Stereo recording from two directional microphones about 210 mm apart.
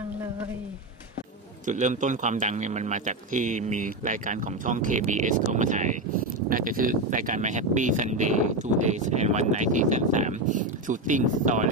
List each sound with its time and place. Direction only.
1.7 s speech: 35° right (ahead or behind)